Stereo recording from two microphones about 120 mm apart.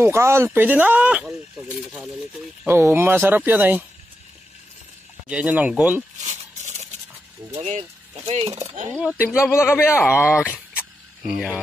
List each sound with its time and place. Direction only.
0.0 s speech: 20° right (ahead or behind)
2.6 s speech: 15° right (ahead or behind)
5.3 s speech: 10° right (ahead or behind)
6.2 s a sound: 75° right (ahead or behind)
7.5 s speech: 60° right (ahead or behind)
9.4 s speech: 20° left (ahead or behind)
11.2 s speech: 10° right (ahead or behind)